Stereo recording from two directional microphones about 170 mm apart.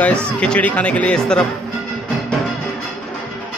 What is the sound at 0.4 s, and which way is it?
Speech, 10° left (ahead or behind).